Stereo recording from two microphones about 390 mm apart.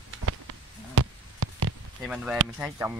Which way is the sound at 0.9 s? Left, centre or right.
Right.